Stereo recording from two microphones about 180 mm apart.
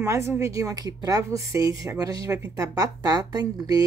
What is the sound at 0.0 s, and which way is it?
A woman's voice, 15° right (ahead or behind).